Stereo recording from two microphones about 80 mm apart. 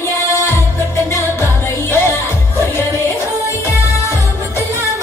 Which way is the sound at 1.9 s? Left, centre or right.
Left.